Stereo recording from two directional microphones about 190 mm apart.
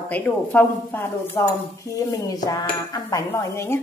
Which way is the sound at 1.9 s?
20° left (ahead or behind).